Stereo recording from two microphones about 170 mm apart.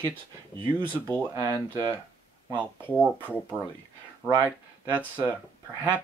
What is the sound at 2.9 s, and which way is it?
Speech, 10° right (ahead or behind).